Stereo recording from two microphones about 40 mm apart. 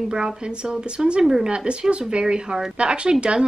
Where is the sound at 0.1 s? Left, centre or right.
Centre.